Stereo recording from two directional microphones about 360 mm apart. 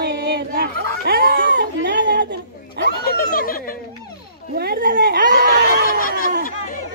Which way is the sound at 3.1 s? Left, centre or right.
Left.